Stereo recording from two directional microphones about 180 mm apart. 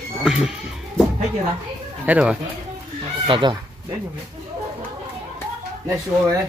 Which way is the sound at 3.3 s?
25° right (ahead or behind).